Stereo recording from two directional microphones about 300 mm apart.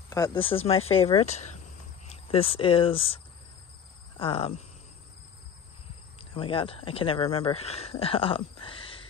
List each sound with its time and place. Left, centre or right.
0.1 s speech: centre
4.2 s speech: centre
6.1 s speech: centre